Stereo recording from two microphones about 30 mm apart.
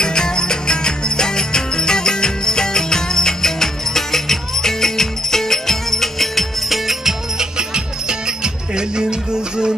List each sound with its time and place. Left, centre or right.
0.0 s music: left; by 6.8 s centre
7.3 s music: right